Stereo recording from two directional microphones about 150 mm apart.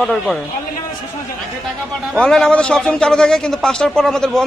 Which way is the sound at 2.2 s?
5° left (ahead or behind).